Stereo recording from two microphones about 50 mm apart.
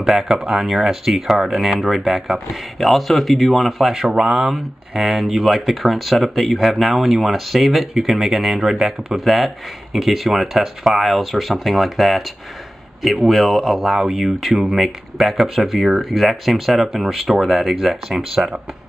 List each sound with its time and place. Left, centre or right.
0.0 s speech: centre
4.1 s speech: right
4.4 s speech: centre
13.3 s speech: centre